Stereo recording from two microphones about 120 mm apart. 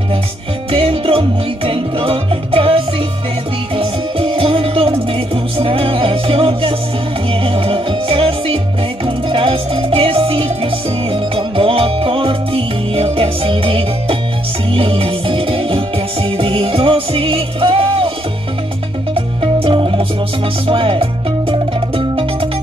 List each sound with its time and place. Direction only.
0.7 s music: 50° right (ahead or behind)
19.1 s music: 50° right (ahead or behind)